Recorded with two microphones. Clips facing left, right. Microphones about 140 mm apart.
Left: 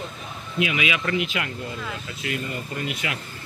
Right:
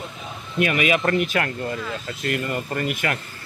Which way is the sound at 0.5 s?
50° right (ahead or behind).